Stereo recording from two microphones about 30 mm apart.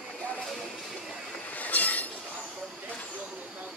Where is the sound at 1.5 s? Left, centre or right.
Left.